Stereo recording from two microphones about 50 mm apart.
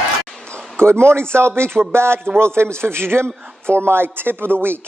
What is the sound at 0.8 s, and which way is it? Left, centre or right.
Speech, right.